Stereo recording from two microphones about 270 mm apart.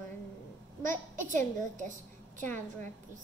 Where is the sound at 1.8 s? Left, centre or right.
Right.